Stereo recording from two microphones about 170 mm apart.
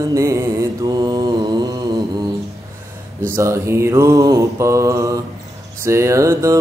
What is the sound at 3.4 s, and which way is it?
Mantra, 15° right (ahead or behind).